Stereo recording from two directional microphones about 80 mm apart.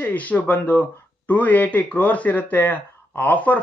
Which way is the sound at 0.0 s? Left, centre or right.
Centre.